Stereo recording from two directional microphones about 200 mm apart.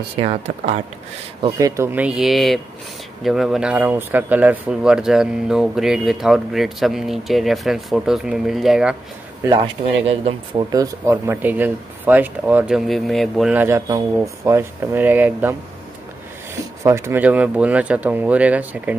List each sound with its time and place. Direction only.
0.1 s speech: 30° right (ahead or behind)
1.6 s speech: 10° right (ahead or behind)
9.5 s speech: 30° right (ahead or behind)
10.7 s speech: 15° right (ahead or behind)
16.8 s speech: 15° right (ahead or behind)